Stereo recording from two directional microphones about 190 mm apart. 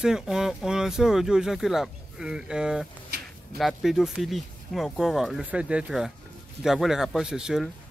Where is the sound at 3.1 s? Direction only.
55° right (ahead or behind).